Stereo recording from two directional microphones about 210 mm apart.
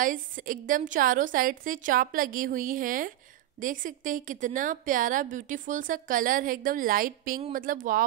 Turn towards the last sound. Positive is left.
turn(degrees=-40)  # may be behind; listen again after turning